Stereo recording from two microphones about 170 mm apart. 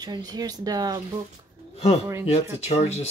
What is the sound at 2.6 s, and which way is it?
Speech, 40° left (ahead or behind).